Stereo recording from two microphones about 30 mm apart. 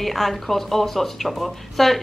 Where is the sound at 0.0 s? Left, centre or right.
Centre.